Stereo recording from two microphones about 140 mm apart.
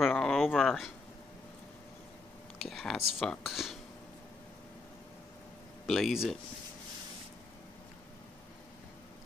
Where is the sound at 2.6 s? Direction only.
Centre (ahead or behind).